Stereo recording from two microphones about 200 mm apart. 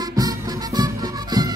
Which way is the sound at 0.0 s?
20° right (ahead or behind).